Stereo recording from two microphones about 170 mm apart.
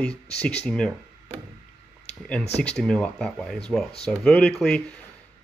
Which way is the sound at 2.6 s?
5° left (ahead or behind).